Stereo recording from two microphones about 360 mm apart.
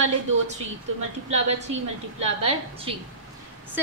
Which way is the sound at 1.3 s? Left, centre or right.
Centre.